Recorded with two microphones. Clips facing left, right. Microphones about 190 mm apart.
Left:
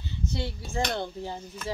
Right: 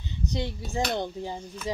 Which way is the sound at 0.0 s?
15° right (ahead or behind).